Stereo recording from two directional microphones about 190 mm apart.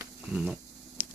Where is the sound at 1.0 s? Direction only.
10° right (ahead or behind).